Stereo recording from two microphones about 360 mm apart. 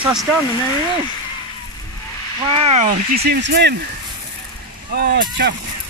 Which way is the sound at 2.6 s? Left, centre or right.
Centre.